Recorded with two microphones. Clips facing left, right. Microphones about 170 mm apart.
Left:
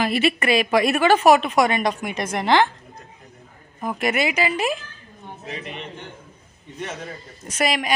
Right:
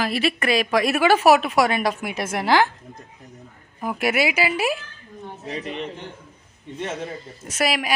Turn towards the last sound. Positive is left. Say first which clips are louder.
# even
turn(degrees=-5)  # may be behind; listen again after turning